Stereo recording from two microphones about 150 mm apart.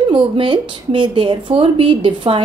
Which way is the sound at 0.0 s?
30° right (ahead or behind).